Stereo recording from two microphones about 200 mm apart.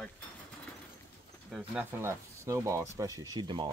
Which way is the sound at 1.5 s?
5° right (ahead or behind).